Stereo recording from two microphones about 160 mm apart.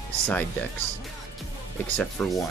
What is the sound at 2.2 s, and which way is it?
Speech, 5° left (ahead or behind).